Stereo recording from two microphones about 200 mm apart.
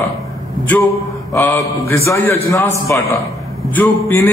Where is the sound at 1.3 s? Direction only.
15° left (ahead or behind).